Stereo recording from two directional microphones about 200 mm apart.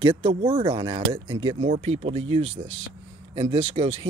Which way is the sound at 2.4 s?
75° right (ahead or behind).